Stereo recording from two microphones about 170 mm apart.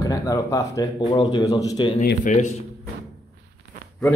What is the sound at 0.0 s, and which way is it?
Speech, 20° left (ahead or behind).